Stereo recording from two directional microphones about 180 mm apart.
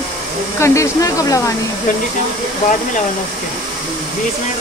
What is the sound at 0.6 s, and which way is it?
Speech, 15° left (ahead or behind).